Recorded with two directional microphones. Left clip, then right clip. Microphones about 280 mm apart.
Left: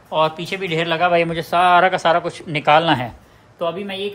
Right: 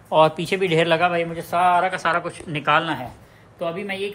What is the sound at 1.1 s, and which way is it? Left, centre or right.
Speech, left.